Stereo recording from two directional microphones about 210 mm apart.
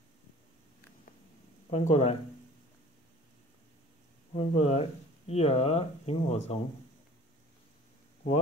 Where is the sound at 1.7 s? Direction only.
30° left (ahead or behind).